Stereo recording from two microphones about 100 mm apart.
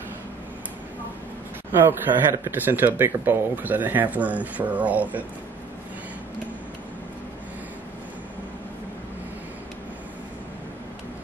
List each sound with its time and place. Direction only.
1.9 s speech: 25° right (ahead or behind)